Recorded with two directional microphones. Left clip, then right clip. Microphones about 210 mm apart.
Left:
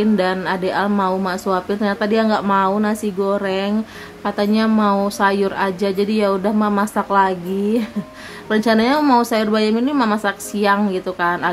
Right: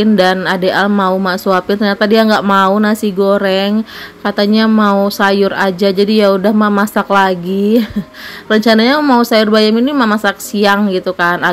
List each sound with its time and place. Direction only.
0.0 s a woman's voice: 25° right (ahead or behind)